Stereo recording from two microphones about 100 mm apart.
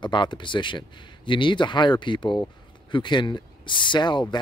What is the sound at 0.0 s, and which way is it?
Speech, 50° left (ahead or behind).